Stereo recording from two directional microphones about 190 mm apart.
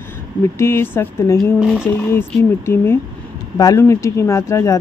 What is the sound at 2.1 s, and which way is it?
Speech, 10° left (ahead or behind).